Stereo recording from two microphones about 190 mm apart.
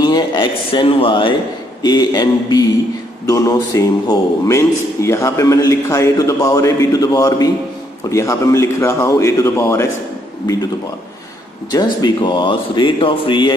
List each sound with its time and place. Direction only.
0.0 s a man's voice: 25° left (ahead or behind)
11.7 s speech: 20° left (ahead or behind)